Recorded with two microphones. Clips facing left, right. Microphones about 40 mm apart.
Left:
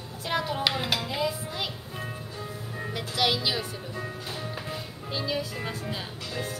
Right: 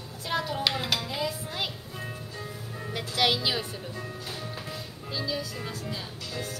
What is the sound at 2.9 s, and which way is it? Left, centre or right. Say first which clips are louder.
Speech: right 1 dB; centre.